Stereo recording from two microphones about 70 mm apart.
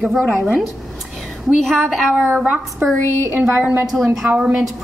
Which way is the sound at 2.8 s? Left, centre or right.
Right.